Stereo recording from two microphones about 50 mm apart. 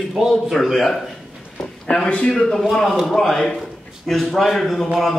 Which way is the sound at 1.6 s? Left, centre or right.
Centre.